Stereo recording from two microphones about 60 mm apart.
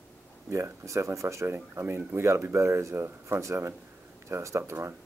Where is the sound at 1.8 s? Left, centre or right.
Right.